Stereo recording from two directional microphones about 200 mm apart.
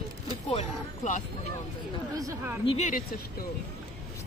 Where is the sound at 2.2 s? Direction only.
15° right (ahead or behind).